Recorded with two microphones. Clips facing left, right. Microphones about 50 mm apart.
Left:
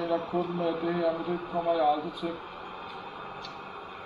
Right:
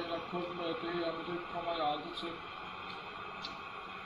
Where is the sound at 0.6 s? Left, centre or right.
Left.